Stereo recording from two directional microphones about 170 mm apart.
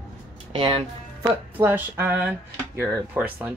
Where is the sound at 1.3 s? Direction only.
10° right (ahead or behind).